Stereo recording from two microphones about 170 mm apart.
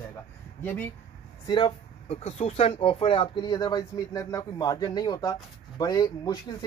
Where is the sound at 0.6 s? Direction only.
10° left (ahead or behind).